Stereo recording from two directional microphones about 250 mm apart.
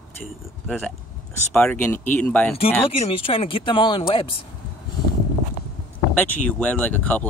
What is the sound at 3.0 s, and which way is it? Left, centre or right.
Speech, left.